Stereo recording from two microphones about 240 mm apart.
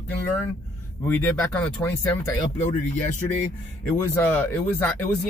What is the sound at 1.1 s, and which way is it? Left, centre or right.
Speech, centre.